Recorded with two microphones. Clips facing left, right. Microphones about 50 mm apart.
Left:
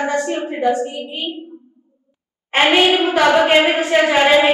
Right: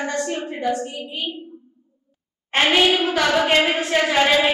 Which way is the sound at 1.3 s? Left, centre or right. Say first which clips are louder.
Left 4 dB; left.